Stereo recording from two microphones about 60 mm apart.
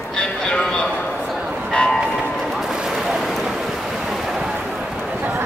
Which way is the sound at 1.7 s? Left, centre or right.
Centre.